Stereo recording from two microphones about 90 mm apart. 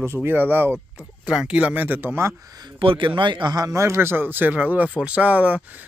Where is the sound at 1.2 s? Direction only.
10° right (ahead or behind); by 2.3 s 25° right (ahead or behind).